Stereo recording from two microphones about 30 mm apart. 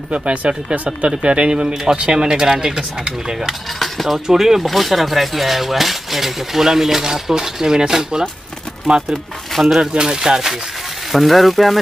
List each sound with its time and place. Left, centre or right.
0.5 s speech: right
1.2 s speech: right
1.5 s speech: right
3.8 s coin: centre
4.3 s speech: centre
4.6 s speech: centre; by 8.3 s right
9.8 s speech: right
11.1 s speech: centre